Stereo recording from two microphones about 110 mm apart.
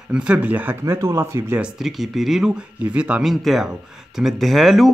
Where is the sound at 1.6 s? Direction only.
5° right (ahead or behind).